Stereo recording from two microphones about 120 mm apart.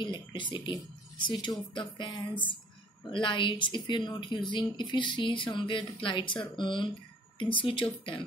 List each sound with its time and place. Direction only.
0.3 s speech: 40° left (ahead or behind)